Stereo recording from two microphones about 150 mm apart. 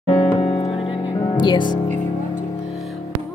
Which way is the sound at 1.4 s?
30° left (ahead or behind).